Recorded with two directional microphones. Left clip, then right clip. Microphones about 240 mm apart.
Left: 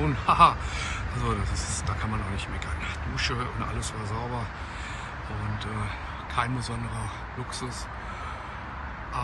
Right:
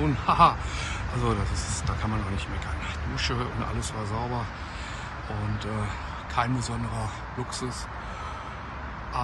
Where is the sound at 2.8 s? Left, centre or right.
Centre.